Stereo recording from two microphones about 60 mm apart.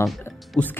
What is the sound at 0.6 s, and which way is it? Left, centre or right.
Speech, left.